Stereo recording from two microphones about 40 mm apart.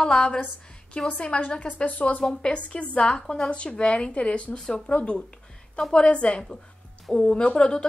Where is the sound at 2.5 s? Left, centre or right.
Left.